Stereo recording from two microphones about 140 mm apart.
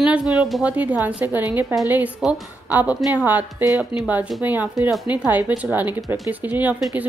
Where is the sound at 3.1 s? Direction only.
10° right (ahead or behind).